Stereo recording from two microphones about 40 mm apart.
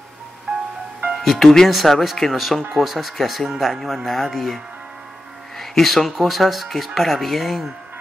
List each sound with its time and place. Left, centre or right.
0.5 s music: right
1.1 s speech: centre
5.6 s speech: centre